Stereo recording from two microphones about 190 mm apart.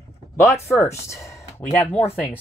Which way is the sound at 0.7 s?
15° left (ahead or behind).